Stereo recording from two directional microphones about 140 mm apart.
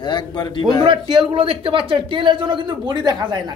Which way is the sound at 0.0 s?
35° left (ahead or behind).